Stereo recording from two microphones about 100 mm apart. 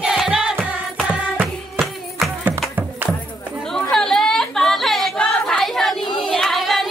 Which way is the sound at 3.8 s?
5° left (ahead or behind).